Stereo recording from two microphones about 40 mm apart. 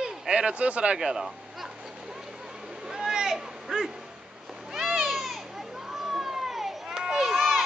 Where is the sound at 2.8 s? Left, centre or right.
Centre.